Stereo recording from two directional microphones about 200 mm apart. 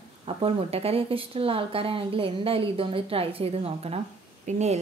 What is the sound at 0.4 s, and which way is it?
A woman's voice, 30° right (ahead or behind).